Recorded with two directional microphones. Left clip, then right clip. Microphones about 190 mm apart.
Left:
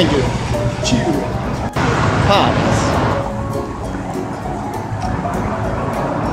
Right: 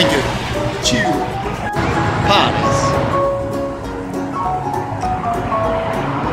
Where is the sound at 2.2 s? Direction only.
10° right (ahead or behind).